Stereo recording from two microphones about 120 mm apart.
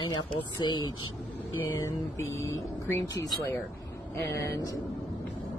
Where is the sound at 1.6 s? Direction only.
20° left (ahead or behind).